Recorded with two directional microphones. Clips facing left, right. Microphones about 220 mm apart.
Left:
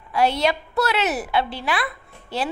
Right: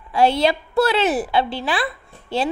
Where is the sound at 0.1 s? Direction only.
30° right (ahead or behind).